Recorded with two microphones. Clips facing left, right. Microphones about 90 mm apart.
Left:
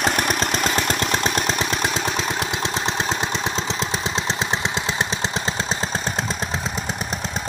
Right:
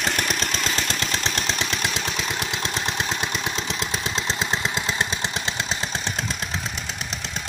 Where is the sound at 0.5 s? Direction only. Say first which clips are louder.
Left 5 dB; 55° left (ahead or behind).